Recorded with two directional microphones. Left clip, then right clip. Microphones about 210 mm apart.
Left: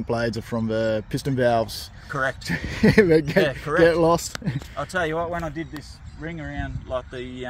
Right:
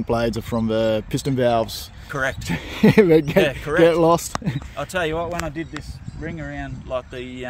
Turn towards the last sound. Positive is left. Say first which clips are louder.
# right 2 dB
turn(degrees=-10)  # may be behind; listen again after turning